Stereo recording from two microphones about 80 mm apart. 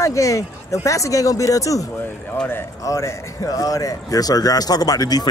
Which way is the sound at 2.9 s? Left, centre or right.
Left.